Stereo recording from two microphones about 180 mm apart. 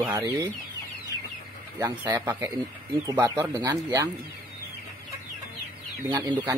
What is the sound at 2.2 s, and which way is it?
Speech, 10° right (ahead or behind).